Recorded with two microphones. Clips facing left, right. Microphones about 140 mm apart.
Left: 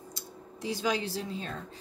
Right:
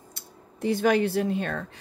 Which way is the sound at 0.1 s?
55° right (ahead or behind).